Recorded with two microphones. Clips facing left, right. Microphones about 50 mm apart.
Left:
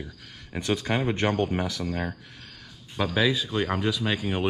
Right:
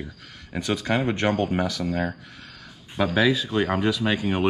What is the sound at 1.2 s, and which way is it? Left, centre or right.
Speech, right.